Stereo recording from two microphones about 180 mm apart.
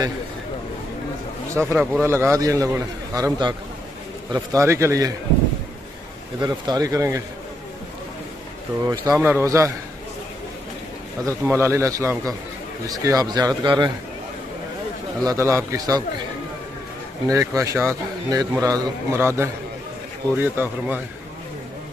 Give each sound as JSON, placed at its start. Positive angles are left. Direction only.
{"t": 1.5, "sound": "a man's voice", "side_deg": -15}
{"t": 6.4, "sound": "speech", "side_deg": -25}
{"t": 8.8, "sound": "a man's voice", "side_deg": -20}
{"t": 11.2, "sound": "a man's voice", "side_deg": -15}
{"t": 15.2, "sound": "a man's voice", "side_deg": -15}
{"t": 17.3, "sound": "a man's voice", "side_deg": -20}